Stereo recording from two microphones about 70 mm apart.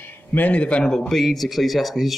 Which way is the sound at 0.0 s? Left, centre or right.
Left.